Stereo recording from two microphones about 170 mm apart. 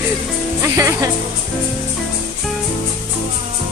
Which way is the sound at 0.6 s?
15° right (ahead or behind).